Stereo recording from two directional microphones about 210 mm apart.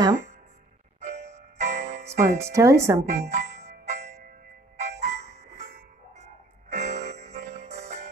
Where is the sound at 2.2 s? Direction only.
15° right (ahead or behind).